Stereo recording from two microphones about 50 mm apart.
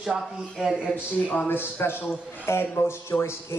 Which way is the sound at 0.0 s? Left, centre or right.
Centre.